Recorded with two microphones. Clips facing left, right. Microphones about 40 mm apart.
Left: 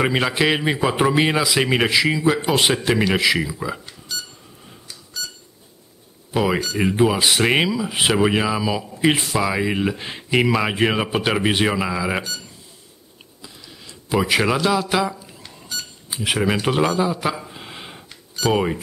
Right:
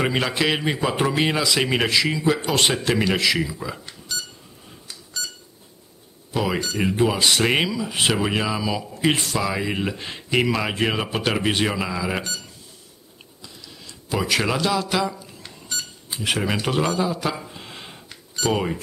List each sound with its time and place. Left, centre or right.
0.0 s speech: centre
6.3 s speech: centre
14.0 s speech: centre